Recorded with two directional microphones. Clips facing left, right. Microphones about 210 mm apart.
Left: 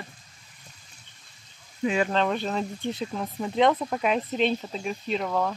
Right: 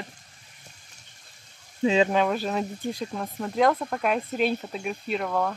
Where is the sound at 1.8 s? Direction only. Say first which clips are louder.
Right 4 dB; 25° right (ahead or behind).